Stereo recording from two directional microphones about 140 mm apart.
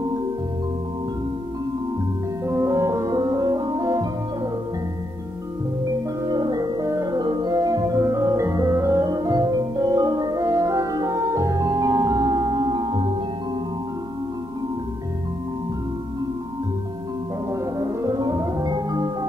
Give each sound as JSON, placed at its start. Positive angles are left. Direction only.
{"t": 2.4, "sound": "music", "side_deg": -20}
{"t": 6.2, "sound": "music", "side_deg": -30}
{"t": 17.7, "sound": "music", "side_deg": -25}